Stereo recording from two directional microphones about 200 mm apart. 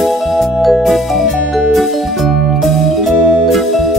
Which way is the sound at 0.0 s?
Centre (ahead or behind).